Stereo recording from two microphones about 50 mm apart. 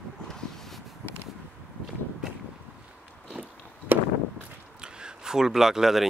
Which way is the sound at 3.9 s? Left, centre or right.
Right.